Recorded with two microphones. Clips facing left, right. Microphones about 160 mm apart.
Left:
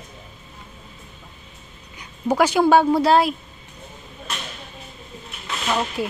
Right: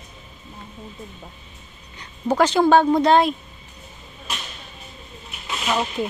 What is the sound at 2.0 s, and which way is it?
A woman's voice, 10° left (ahead or behind).